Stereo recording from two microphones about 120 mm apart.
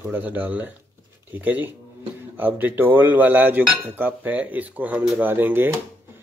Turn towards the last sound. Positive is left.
turn(degrees=-20)  # may be behind; listen again after turning